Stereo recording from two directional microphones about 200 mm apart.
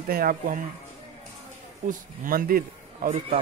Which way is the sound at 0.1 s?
45° right (ahead or behind).